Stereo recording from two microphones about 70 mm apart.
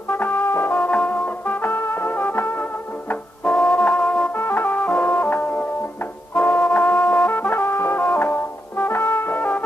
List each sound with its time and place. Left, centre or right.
0.2 s brass instrument: left
0.7 s music: centre
3.4 s brass instrument: centre
4.3 s music: left
6.3 s brass instrument: centre
8.1 s music: left
9.3 s music: left